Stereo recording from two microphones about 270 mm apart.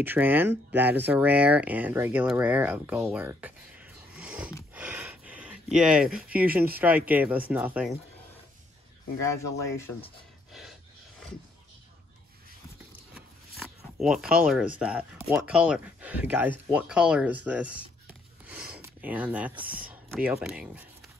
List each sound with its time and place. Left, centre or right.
0.0 s speech: centre
9.6 s speech: centre
13.1 s speech: centre